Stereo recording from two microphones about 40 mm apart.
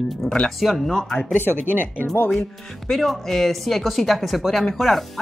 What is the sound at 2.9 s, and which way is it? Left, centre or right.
Speech, centre.